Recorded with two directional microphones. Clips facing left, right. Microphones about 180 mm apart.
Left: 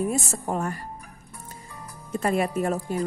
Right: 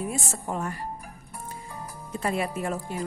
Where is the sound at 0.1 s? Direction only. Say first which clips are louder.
Left 4 dB; 40° left (ahead or behind).